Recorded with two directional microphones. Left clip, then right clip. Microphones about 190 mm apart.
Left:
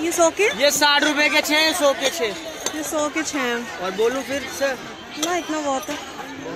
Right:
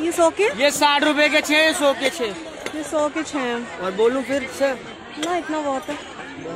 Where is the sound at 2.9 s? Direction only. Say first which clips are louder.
Right 2 dB; 10° right (ahead or behind).